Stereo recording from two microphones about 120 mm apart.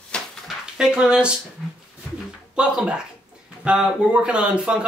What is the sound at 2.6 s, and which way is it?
Speech, 5° right (ahead or behind).